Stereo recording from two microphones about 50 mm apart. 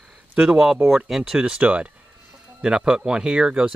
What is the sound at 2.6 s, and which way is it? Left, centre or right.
Speech, centre.